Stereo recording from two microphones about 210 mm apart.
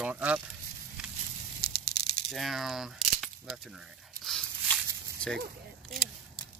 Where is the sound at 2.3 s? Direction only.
Centre (ahead or behind).